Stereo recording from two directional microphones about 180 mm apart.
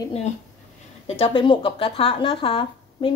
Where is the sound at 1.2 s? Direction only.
30° left (ahead or behind).